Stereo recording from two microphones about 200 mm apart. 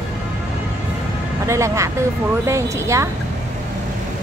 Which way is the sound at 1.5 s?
15° right (ahead or behind).